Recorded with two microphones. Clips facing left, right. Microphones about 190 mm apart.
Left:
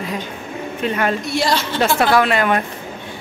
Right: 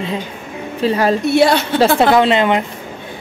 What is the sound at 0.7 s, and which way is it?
Speech, 30° right (ahead or behind).